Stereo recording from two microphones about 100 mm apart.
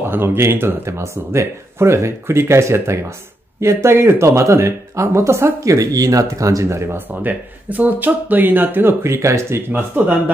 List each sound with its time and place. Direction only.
0.0 s speech: 20° right (ahead or behind)